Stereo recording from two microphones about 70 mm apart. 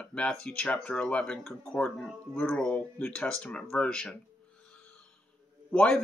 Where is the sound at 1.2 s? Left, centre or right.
Centre.